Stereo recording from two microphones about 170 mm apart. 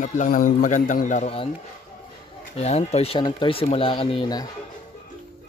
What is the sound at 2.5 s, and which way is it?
Speech, 40° left (ahead or behind).